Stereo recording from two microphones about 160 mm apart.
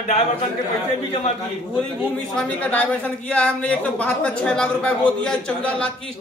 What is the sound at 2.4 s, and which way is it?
A woman's voice, 10° left (ahead or behind).